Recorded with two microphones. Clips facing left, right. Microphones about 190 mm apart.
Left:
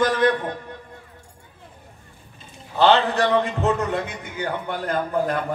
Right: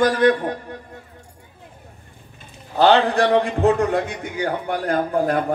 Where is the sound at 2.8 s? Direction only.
45° right (ahead or behind).